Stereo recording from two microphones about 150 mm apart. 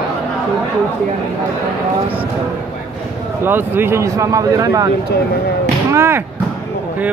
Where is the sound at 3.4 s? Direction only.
15° right (ahead or behind).